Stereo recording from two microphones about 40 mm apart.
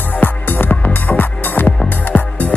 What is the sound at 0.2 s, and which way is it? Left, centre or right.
Music, left.